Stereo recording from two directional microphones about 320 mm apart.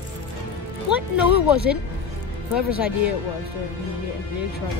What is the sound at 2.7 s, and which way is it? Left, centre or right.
Speech, centre.